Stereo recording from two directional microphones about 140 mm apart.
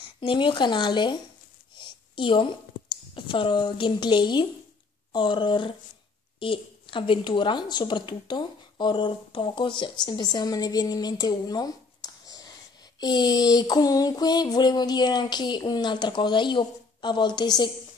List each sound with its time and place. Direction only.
0.0 s a woman's voice: 35° left (ahead or behind)